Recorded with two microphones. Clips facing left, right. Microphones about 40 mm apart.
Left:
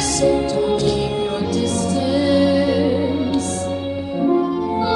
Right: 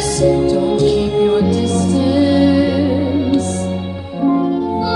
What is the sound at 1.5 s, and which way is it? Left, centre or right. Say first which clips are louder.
Music: right 4 dB; right.